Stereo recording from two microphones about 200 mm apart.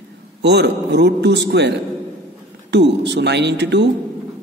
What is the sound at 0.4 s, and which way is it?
A man's voice, 55° right (ahead or behind).